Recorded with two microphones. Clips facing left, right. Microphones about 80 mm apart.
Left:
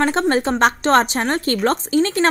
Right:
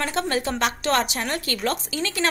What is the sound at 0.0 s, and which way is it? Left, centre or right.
A woman's voice, left.